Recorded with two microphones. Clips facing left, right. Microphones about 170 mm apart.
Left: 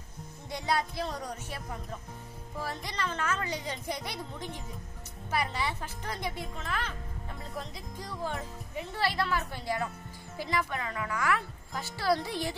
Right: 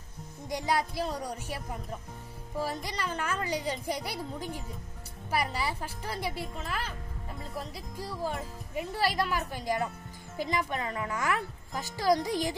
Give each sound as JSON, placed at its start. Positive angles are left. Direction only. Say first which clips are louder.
{"t": 0.5, "sound": "speech", "louder": "right 1 dB", "side_deg": -10}